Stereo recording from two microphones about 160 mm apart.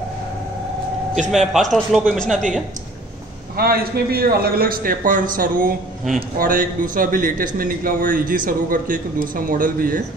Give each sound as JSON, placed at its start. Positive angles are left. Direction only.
{"t": 1.3, "sound": "a man's voice", "side_deg": 0}
{"t": 3.5, "sound": "a man's voice", "side_deg": -70}